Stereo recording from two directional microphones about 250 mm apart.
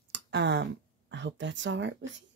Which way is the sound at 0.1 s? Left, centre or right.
Right.